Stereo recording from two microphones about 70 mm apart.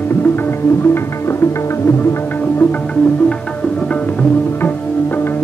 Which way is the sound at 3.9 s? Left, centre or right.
Left.